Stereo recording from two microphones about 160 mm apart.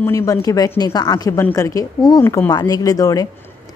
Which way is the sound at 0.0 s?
15° left (ahead or behind).